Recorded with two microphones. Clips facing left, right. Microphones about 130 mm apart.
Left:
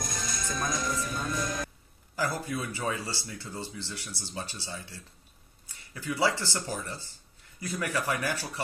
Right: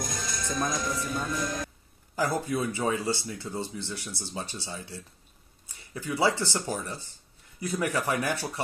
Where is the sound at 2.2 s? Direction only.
20° right (ahead or behind).